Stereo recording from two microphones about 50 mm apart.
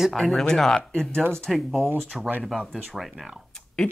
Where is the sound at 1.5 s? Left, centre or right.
Centre.